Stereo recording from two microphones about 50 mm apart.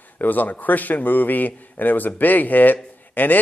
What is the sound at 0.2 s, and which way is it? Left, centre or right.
A man's voice, left.